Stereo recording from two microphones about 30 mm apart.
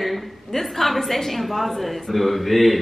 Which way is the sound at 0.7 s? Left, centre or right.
Centre.